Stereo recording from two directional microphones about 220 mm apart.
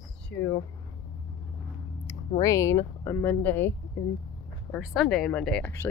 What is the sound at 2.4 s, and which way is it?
Speech, 15° left (ahead or behind).